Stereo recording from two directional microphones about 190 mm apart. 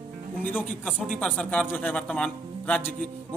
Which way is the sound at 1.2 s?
5° left (ahead or behind).